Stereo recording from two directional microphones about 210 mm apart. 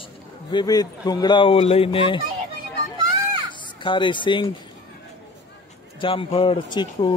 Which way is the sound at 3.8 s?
25° left (ahead or behind).